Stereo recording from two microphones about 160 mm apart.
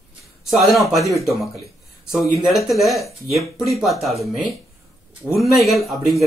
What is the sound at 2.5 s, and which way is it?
Speech, centre (ahead or behind).